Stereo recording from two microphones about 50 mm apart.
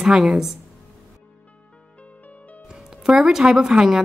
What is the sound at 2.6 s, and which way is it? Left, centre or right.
Music, centre.